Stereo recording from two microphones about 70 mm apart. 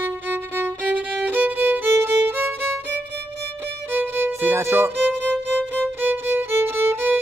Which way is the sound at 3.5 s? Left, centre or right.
Right.